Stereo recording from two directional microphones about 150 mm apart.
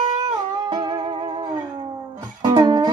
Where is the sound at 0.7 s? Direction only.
25° right (ahead or behind).